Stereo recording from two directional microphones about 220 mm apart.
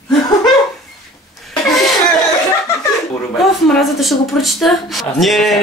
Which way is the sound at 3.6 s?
Centre (ahead or behind).